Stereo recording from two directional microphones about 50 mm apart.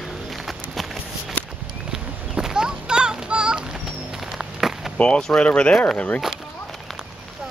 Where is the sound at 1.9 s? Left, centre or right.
Centre.